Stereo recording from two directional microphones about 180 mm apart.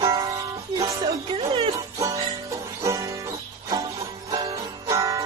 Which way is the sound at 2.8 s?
20° right (ahead or behind).